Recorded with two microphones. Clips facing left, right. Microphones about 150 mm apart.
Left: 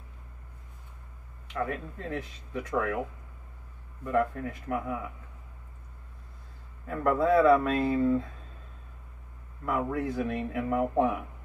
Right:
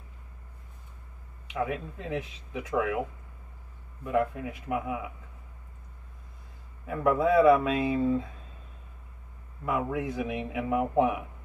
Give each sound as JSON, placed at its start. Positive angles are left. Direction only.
{"t": 1.5, "sound": "a man's voice", "side_deg": -15}
{"t": 4.0, "sound": "a man's voice", "side_deg": -15}
{"t": 6.9, "sound": "a man's voice", "side_deg": -15}
{"t": 9.7, "sound": "a man's voice", "side_deg": -15}